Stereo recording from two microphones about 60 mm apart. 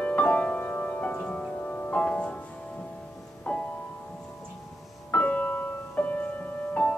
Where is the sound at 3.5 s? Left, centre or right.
Centre.